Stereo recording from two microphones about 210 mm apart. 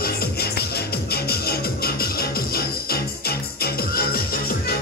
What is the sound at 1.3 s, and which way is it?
Music, 50° left (ahead or behind).